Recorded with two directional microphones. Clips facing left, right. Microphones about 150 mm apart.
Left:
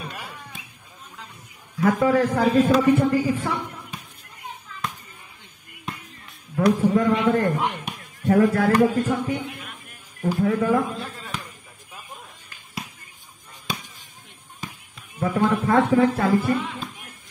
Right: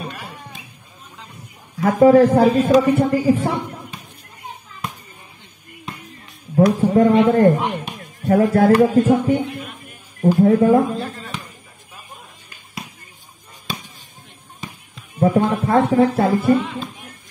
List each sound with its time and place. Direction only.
1.8 s a man's voice: 35° right (ahead or behind)
6.5 s a man's voice: 35° right (ahead or behind)
10.4 s a man's voice: 35° right (ahead or behind)
15.1 s a man's voice: 35° right (ahead or behind)